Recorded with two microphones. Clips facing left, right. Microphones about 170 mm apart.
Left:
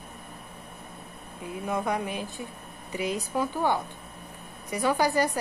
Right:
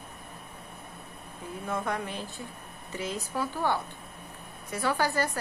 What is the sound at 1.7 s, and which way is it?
A woman's voice, 15° left (ahead or behind).